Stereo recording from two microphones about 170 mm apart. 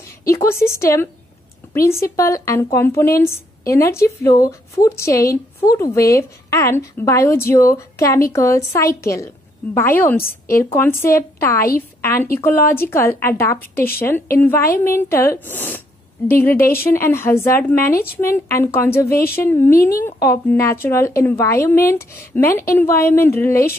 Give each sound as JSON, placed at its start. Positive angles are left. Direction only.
{"t": 0.2, "sound": "a woman's voice", "side_deg": 20}